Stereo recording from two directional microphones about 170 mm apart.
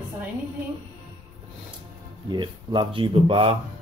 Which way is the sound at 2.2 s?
30° right (ahead or behind).